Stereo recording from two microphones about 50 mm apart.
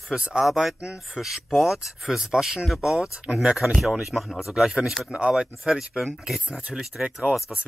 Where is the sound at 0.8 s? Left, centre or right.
Centre.